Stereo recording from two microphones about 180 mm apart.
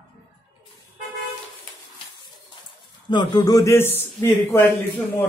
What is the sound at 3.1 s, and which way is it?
A man's voice, 25° left (ahead or behind).